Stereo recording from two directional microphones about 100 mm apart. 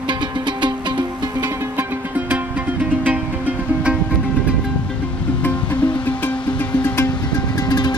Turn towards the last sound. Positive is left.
turn(degrees=15)  # may be behind; listen again after turning